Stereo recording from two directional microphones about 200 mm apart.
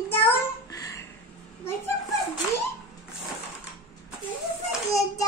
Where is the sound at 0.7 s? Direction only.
15° left (ahead or behind).